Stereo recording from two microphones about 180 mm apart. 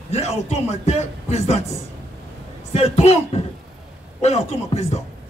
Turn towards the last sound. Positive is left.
turn(degrees=35)  # may be behind; listen again after turning